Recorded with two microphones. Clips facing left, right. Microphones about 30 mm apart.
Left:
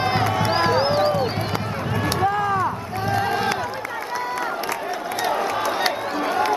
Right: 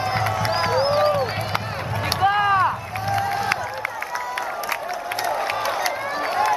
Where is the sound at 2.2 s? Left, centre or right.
Right.